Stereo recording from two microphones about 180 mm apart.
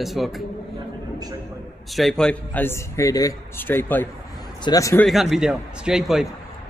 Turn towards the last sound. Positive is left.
turn(degrees=-5)  # may be behind; listen again after turning